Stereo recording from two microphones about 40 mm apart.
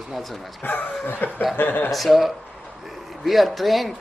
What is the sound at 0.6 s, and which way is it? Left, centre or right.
Speech, left.